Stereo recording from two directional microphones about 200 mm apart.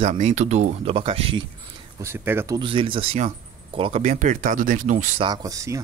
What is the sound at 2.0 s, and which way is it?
Speech, 10° right (ahead or behind).